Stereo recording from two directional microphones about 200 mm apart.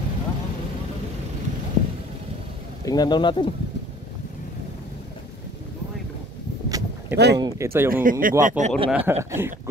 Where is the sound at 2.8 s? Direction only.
20° left (ahead or behind).